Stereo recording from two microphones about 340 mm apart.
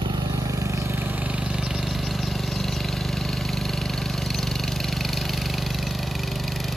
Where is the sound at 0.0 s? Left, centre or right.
Centre.